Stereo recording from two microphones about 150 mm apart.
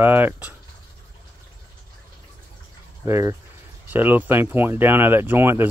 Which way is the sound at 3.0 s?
15° right (ahead or behind).